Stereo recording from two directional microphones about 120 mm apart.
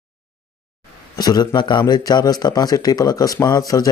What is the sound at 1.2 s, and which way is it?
A man's voice, 35° left (ahead or behind).